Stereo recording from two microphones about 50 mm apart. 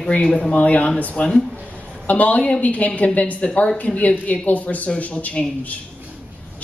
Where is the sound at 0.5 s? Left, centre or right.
Left.